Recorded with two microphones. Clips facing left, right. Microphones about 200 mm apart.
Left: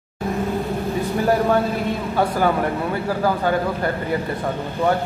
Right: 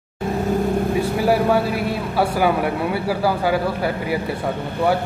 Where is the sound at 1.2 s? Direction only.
10° right (ahead or behind).